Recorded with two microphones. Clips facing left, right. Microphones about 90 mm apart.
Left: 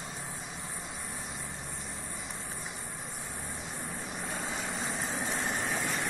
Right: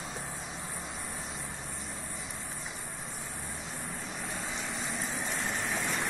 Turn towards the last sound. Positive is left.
turn(degrees=30)  # may be behind; listen again after turning